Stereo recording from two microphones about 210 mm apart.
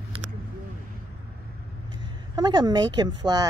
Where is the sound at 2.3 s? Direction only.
20° right (ahead or behind).